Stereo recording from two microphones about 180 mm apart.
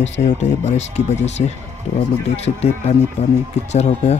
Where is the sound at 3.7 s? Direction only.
40° left (ahead or behind).